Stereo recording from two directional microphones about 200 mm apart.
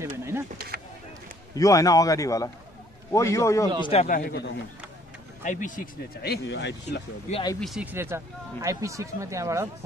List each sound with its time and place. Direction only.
0.0 s speech: 15° right (ahead or behind)
1.5 s a man's voice: 15° left (ahead or behind)
3.8 s speech: 30° left (ahead or behind)
4.1 s speech: 50° left (ahead or behind)
7.6 s speech: 5° right (ahead or behind)